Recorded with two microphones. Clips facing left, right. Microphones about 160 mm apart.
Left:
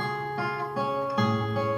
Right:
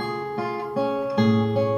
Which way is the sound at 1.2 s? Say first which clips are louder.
Right 10 dB; 30° right (ahead or behind).